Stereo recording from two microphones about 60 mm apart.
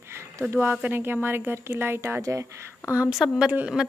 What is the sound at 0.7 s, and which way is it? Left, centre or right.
A woman's voice, right.